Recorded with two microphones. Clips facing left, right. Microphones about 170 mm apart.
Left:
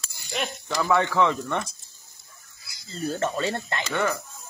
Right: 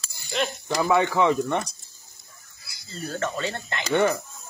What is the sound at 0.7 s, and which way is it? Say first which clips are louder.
Speech: right 1 dB; 15° right (ahead or behind).